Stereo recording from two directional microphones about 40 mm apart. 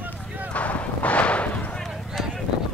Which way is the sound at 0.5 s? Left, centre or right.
Left.